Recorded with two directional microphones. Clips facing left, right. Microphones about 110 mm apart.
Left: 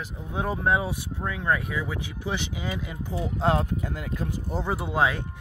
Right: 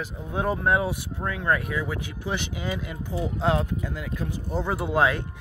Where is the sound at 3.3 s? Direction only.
40° left (ahead or behind).